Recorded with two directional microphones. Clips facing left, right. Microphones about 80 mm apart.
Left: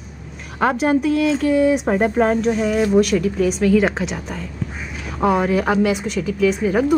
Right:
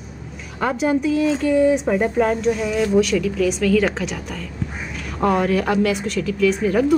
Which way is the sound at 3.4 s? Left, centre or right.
Left.